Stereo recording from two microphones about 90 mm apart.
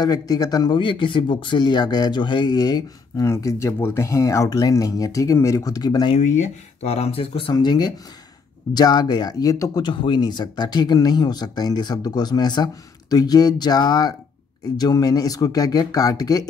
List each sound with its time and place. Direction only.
0.0 s speech: 45° left (ahead or behind)
0.7 s speech: 65° left (ahead or behind); by 3.3 s 50° left (ahead or behind)
3.3 s speech: 35° left (ahead or behind)
7.1 s speech: 85° left
7.5 s speech: 50° left (ahead or behind)
9.8 s speech: 60° left (ahead or behind); by 16.4 s 45° left (ahead or behind)